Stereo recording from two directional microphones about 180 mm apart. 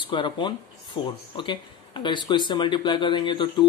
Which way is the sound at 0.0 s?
25° left (ahead or behind).